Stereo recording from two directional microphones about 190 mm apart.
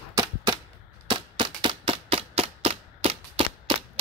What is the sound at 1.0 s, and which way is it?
Typewriter, 25° right (ahead or behind).